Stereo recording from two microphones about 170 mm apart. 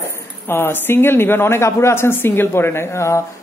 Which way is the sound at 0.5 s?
15° left (ahead or behind).